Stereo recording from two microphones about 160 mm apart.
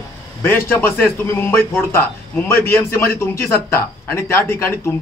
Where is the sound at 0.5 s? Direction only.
15° left (ahead or behind).